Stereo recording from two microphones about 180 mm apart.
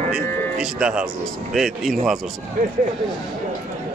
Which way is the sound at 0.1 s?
5° right (ahead or behind).